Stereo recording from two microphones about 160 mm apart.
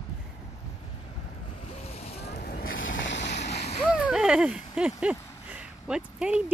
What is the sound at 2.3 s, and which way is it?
Boat, 70° left (ahead or behind).